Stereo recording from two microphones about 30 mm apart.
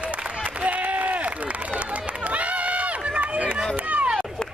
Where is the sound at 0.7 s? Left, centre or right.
Right.